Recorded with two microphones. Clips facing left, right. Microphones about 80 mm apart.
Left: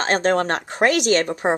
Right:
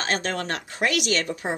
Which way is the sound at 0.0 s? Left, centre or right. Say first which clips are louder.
Left 8 dB; left.